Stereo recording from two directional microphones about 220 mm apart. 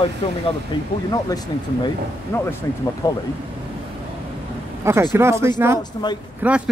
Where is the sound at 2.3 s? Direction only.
10° left (ahead or behind).